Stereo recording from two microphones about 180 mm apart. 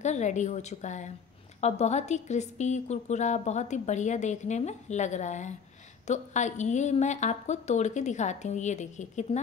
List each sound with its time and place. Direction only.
0.0 s a woman's voice: 40° left (ahead or behind)